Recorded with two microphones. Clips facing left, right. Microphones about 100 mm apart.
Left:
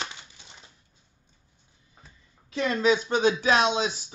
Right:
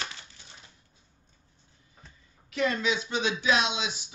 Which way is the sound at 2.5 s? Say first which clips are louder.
Left 4 dB; 35° left (ahead or behind).